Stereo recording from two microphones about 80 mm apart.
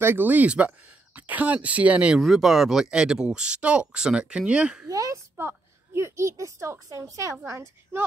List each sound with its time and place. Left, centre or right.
0.0 s speech: right
2.2 s speech: centre
4.8 s a woman's voice: right
5.4 s a child's voice: right